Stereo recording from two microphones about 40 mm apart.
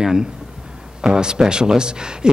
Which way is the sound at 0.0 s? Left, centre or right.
Centre.